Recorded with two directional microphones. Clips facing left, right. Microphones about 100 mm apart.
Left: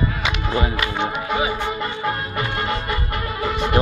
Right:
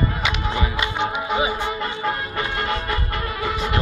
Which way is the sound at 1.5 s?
5° left (ahead or behind).